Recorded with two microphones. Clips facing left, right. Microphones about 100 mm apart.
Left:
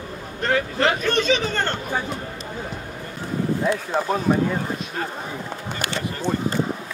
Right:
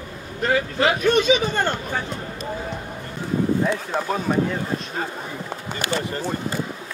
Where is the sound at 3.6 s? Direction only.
5° left (ahead or behind).